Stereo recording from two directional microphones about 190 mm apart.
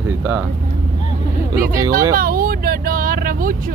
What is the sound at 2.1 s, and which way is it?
Vehicle, 50° right (ahead or behind).